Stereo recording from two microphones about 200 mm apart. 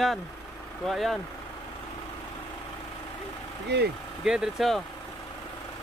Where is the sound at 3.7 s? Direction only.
55° right (ahead or behind).